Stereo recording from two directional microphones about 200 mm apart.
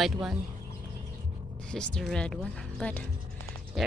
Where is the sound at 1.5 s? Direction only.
5° left (ahead or behind).